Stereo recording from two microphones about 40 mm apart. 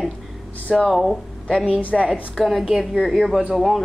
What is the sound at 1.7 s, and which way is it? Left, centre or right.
Speech, left.